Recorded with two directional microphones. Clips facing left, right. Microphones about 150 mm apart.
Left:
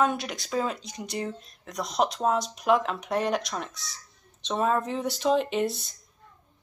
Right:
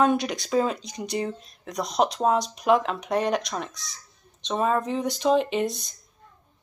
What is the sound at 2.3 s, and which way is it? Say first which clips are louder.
Speech: right 2 dB; 5° left (ahead or behind).